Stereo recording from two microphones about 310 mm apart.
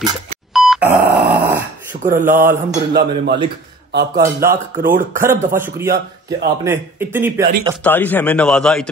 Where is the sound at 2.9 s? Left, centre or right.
Right.